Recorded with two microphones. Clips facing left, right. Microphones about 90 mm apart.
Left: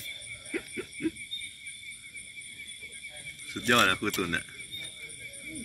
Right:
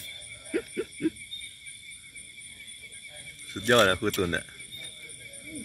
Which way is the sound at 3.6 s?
35° right (ahead or behind).